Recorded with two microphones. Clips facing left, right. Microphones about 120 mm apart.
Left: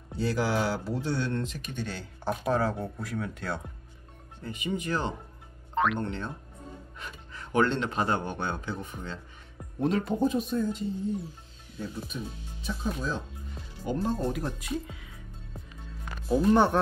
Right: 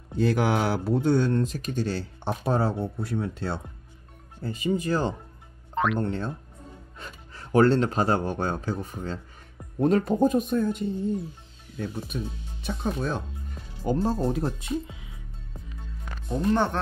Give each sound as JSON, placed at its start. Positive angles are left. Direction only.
{"t": 0.2, "sound": "speech", "side_deg": -60}
{"t": 12.1, "sound": "speech", "side_deg": -60}
{"t": 13.8, "sound": "speech", "side_deg": -35}
{"t": 16.3, "sound": "speech", "side_deg": 5}